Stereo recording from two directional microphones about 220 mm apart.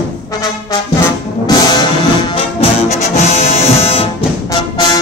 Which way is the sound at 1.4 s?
20° left (ahead or behind).